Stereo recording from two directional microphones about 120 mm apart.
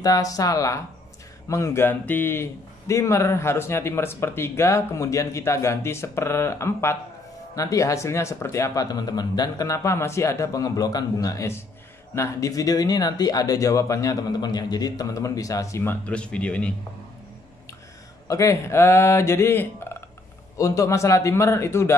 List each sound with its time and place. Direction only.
0.0 s speech: 30° left (ahead or behind); by 16.7 s 10° left (ahead or behind)
18.3 s speech: 25° left (ahead or behind)